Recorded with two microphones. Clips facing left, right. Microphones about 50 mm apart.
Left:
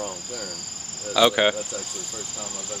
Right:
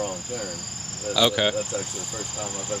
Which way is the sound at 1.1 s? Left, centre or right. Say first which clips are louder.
Left 3 dB; centre.